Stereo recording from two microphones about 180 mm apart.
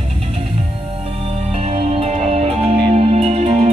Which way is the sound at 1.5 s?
35° right (ahead or behind).